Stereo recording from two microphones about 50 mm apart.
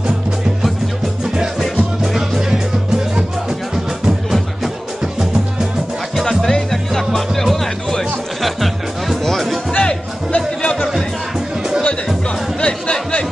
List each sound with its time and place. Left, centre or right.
1.2 s music: centre
6.1 s music: centre
9.7 s music: left
11.3 s music: centre
12.5 s chatter: left